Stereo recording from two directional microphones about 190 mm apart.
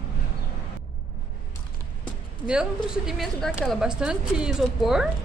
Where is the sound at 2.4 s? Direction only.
5° right (ahead or behind).